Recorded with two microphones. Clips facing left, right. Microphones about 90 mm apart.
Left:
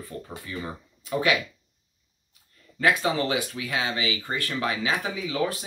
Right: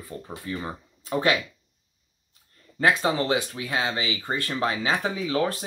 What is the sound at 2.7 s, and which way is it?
Speech, 30° right (ahead or behind).